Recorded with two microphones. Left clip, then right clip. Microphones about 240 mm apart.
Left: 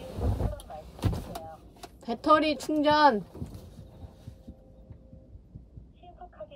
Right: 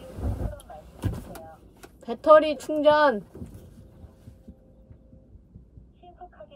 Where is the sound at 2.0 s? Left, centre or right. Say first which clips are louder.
Right 6 dB; centre.